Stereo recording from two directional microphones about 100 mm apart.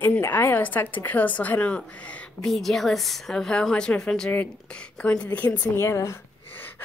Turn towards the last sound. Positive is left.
turn(degrees=20)  # may be behind; listen again after turning